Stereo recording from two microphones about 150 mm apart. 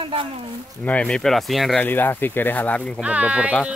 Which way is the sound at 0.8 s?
10° left (ahead or behind).